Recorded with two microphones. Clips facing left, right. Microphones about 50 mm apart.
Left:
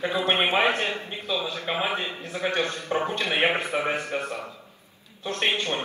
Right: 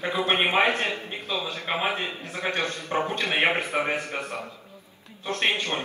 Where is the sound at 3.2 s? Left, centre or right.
Right.